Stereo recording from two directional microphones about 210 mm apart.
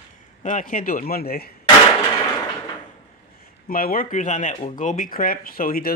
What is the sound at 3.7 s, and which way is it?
Speech, 40° left (ahead or behind).